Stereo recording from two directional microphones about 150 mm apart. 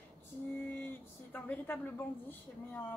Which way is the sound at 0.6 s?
15° left (ahead or behind).